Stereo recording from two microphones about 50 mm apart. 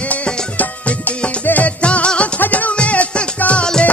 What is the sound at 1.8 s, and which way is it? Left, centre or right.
Music, left.